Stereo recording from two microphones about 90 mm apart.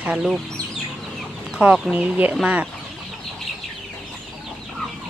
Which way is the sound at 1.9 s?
10° right (ahead or behind).